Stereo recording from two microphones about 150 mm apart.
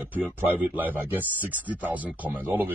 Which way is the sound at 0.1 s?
10° right (ahead or behind).